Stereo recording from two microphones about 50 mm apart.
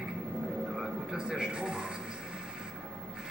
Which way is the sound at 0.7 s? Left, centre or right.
Centre.